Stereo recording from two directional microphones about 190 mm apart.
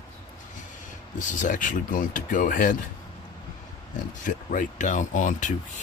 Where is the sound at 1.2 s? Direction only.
40° left (ahead or behind).